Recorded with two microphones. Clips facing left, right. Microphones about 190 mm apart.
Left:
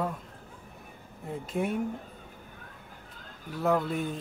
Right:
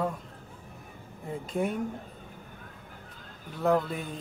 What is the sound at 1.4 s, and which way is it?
Speech, centre (ahead or behind).